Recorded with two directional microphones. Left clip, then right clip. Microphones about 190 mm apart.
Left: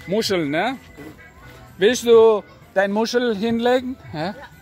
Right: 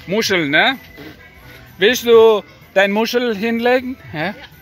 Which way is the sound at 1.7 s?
20° left (ahead or behind).